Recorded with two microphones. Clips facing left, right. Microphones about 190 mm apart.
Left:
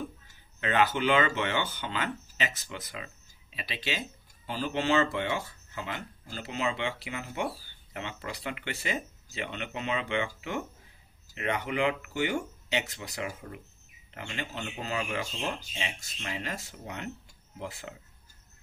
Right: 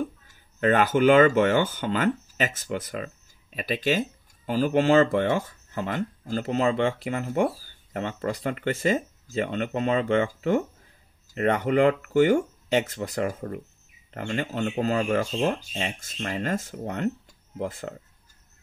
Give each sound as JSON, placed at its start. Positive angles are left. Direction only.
{"t": 0.6, "sound": "speech", "side_deg": -45}